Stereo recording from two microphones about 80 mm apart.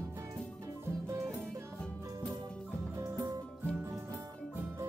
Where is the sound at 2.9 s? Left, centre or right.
Right.